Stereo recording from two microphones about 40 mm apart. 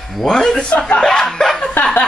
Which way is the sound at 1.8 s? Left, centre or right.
Left.